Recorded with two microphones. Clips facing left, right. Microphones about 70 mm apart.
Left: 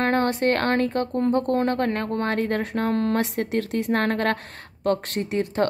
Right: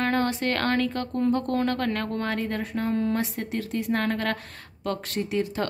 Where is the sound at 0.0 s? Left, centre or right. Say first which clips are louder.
Left 4 dB; left.